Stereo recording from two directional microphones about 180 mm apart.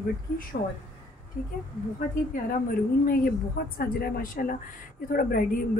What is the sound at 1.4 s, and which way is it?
Speech, 45° left (ahead or behind).